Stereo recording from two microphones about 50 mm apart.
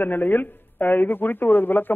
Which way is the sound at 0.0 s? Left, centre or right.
Left.